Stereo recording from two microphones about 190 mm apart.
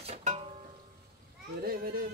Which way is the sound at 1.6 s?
50° right (ahead or behind).